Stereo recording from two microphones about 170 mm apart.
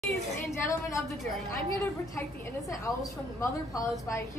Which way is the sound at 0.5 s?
20° left (ahead or behind).